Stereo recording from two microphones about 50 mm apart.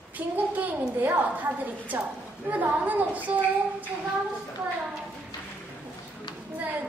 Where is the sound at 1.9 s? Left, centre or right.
Right.